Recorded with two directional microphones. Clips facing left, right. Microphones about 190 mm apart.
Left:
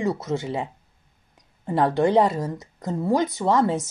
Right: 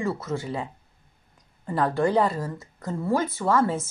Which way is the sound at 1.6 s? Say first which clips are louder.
Left 3 dB; 20° left (ahead or behind).